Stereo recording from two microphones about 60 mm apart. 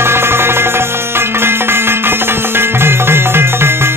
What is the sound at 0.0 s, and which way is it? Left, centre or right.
Music, right.